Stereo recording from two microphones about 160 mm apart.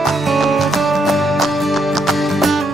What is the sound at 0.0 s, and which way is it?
Music, centre (ahead or behind).